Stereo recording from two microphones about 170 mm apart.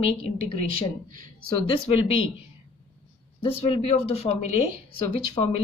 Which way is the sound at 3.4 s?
35° left (ahead or behind).